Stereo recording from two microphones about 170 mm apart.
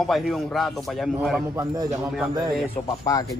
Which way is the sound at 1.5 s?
20° right (ahead or behind).